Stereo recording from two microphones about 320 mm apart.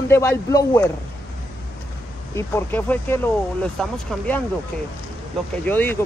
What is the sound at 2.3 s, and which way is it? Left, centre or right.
Speech, centre.